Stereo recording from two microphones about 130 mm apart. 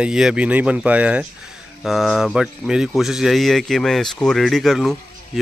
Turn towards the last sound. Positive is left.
turn(degrees=0)  # may be behind; listen again after turning